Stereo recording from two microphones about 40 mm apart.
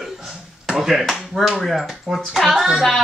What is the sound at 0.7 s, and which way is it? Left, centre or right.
Speech, centre.